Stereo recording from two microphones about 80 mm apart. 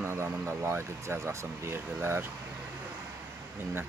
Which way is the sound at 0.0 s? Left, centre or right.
Right.